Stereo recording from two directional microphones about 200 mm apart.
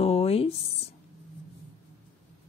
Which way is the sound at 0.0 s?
30° left (ahead or behind).